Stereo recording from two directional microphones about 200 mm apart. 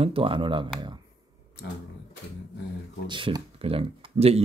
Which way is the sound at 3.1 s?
25° right (ahead or behind).